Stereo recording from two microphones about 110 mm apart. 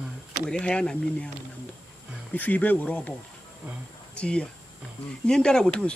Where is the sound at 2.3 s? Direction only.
15° left (ahead or behind).